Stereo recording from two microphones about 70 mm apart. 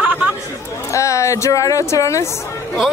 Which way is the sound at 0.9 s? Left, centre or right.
Left.